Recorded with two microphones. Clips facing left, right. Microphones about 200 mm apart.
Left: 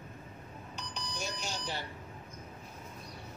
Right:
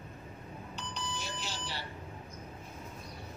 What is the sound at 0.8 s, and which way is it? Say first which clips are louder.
Alarm: left 1 dB; 45° left (ahead or behind).